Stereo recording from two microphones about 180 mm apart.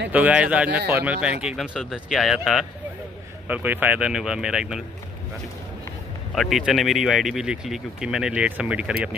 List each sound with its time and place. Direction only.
0.1 s a man's voice: 10° right (ahead or behind)
6.3 s speech: centre (ahead or behind)